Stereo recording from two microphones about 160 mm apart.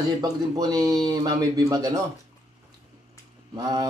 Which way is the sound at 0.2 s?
25° right (ahead or behind).